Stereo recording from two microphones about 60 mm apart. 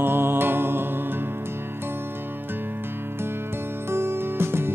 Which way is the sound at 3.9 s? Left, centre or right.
Right.